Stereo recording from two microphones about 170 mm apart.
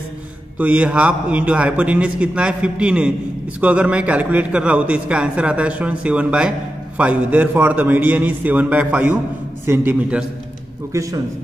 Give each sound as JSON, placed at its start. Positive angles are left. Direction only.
{"t": 0.6, "sound": "a man's voice", "side_deg": -10}